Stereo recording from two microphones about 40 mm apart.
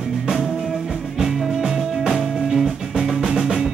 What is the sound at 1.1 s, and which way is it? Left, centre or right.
Music, centre.